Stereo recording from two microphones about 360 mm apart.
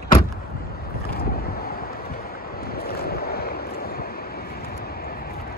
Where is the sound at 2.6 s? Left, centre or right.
Left.